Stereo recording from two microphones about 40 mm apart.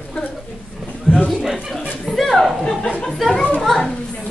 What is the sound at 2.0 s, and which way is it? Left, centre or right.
Speech, centre.